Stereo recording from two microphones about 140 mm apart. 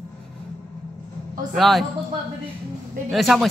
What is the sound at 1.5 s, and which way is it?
Speech, centre (ahead or behind).